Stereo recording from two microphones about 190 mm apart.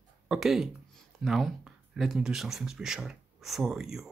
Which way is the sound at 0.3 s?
Centre (ahead or behind).